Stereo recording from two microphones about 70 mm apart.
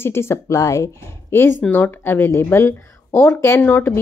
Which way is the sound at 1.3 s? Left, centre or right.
Left.